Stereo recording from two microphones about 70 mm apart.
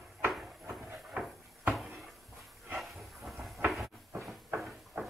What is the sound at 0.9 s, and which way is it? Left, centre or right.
Cupboard open or close, centre.